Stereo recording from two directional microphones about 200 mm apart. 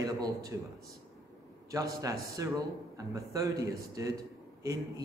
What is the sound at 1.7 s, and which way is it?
A man's voice, 15° right (ahead or behind).